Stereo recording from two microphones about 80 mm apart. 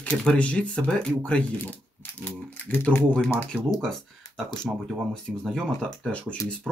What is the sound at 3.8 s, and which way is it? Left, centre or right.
Speech, centre.